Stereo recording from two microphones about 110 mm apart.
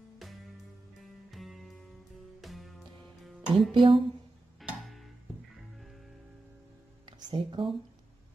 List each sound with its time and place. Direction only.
1.3 s music: centre (ahead or behind)
3.7 s speech: 55° right (ahead or behind)
7.1 s music: 45° right (ahead or behind)